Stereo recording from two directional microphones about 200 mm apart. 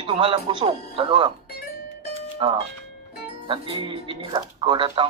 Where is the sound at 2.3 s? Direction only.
25° right (ahead or behind).